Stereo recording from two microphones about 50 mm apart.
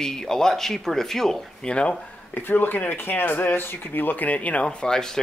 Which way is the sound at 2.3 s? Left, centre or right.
Left.